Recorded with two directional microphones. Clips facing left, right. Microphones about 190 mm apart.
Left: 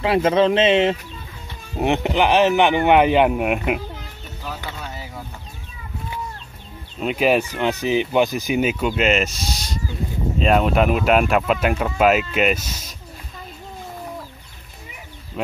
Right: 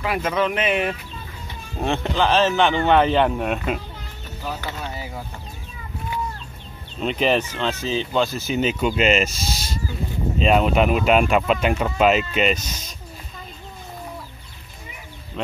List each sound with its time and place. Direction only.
0.0 s speech: 30° left (ahead or behind); by 3.8 s 15° left (ahead or behind)
7.0 s speech: 5° left (ahead or behind)
15.4 s speech: 5° left (ahead or behind)